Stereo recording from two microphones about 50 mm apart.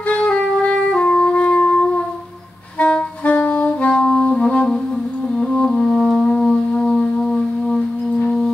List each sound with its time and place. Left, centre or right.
0.1 s music: left
2.8 s saxophone: left
3.9 s music: centre